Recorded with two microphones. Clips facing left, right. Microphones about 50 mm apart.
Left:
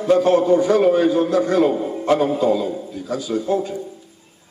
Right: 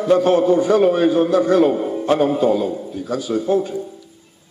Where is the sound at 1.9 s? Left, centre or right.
Right.